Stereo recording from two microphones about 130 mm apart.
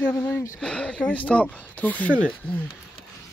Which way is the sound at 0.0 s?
10° left (ahead or behind).